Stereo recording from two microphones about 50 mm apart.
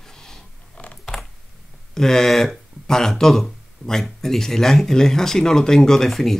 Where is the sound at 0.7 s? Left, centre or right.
Left.